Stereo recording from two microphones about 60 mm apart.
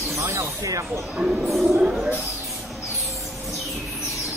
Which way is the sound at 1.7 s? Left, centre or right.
Centre.